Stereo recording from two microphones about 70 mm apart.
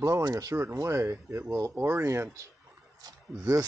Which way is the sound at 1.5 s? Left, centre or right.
Right.